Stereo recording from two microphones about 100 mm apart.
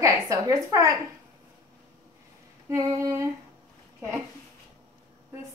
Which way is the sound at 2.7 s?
30° right (ahead or behind).